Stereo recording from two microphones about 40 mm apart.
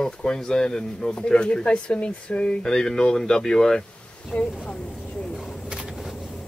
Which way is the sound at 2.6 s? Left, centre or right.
Centre.